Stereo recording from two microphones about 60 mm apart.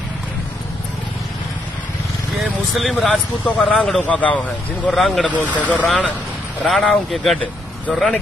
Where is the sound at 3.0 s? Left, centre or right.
Centre.